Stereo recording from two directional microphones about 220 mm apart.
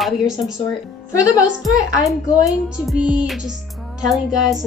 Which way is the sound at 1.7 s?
15° left (ahead or behind).